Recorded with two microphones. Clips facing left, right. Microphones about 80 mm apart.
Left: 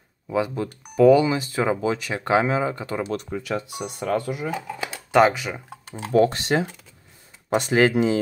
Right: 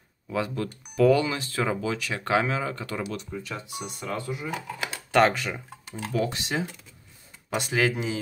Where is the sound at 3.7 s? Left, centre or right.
Left.